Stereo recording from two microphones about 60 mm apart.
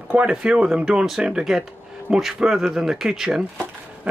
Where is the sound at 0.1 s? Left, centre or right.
Centre.